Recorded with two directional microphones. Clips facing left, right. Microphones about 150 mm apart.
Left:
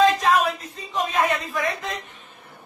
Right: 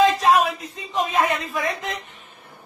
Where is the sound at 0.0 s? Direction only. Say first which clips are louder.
Right 1 dB; 15° right (ahead or behind).